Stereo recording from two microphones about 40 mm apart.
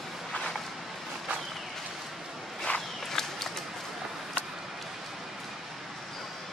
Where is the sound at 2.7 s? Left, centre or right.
Left.